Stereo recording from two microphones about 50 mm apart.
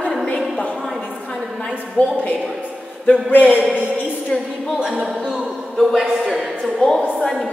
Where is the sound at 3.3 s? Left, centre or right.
Left.